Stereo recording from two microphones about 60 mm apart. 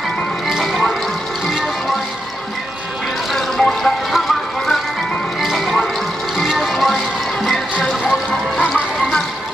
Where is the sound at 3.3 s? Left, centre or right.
Centre.